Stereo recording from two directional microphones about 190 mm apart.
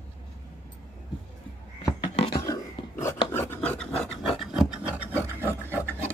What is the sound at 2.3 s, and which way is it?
Filing, 15° left (ahead or behind).